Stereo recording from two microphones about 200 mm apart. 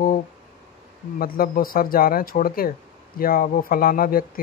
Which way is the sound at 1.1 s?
45° left (ahead or behind).